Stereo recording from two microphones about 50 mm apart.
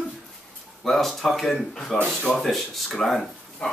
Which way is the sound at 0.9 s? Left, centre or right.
Centre.